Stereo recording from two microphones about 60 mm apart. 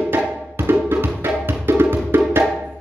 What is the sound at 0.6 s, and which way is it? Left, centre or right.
Music, right.